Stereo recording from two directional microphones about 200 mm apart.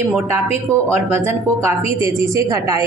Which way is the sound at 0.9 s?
10° right (ahead or behind).